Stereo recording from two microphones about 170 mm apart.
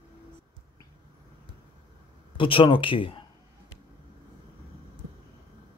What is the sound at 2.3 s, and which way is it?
Speech, 30° left (ahead or behind).